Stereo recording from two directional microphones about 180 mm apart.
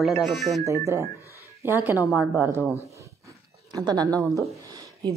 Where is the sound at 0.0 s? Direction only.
Centre (ahead or behind).